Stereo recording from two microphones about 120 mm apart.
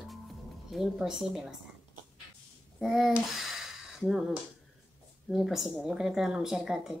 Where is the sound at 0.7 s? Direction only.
5° right (ahead or behind).